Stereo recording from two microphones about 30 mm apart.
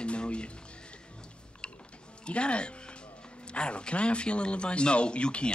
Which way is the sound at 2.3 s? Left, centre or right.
Left.